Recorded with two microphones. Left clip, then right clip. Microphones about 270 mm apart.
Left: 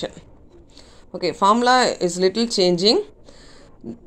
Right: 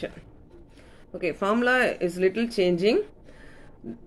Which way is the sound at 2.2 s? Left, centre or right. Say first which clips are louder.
Left 5 dB; left.